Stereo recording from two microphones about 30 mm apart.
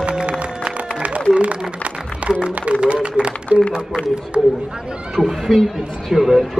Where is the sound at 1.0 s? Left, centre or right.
Right.